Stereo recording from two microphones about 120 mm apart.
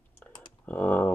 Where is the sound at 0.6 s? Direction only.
15° left (ahead or behind).